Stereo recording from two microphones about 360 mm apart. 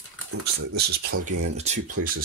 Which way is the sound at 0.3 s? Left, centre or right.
Right.